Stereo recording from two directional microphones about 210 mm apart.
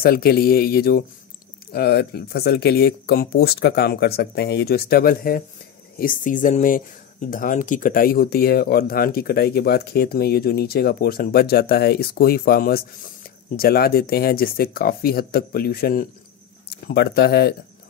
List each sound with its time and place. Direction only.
0.0 s speech: 45° left (ahead or behind)